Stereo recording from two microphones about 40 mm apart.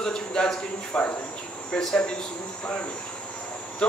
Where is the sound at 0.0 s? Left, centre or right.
Centre.